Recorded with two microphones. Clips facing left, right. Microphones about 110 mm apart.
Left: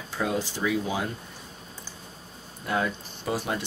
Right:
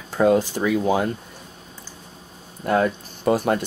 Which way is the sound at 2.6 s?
50° right (ahead or behind).